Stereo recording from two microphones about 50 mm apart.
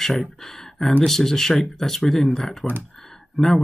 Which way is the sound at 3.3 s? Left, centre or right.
Centre.